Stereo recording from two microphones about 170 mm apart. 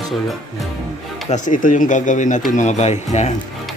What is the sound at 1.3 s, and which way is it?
Speech, 50° left (ahead or behind).